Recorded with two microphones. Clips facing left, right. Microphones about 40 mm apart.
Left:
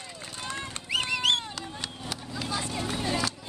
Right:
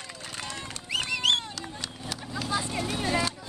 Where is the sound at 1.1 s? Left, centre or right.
Centre.